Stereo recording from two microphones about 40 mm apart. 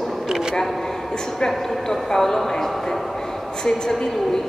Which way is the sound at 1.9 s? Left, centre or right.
Centre.